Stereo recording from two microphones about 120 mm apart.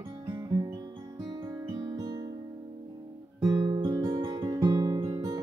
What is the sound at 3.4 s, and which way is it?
Guitar, 40° right (ahead or behind).